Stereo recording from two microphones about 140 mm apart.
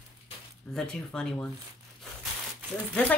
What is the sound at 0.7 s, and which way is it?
Speech, 5° left (ahead or behind).